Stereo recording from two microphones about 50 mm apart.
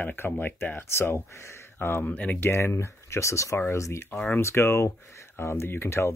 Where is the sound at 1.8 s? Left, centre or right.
Left.